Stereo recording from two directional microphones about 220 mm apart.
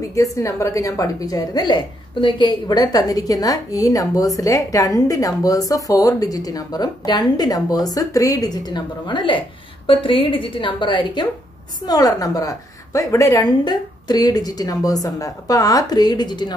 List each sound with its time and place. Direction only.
0.1 s a woman's voice: 15° left (ahead or behind)